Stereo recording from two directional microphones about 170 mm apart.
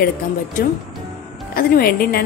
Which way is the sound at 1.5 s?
60° left (ahead or behind).